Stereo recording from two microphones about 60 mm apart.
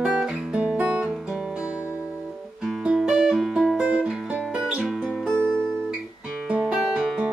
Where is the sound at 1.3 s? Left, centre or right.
Centre.